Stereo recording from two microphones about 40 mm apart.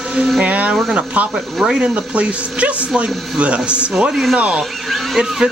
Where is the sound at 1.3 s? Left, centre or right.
Centre.